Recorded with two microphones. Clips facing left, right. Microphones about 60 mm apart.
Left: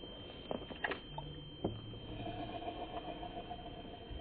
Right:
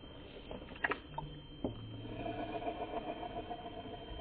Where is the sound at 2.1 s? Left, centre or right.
Right.